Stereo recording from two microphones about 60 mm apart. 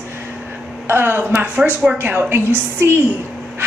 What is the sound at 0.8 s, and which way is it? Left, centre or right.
Speech, right.